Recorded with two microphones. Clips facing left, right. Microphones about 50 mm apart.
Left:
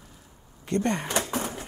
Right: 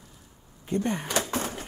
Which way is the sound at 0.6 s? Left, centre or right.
Left.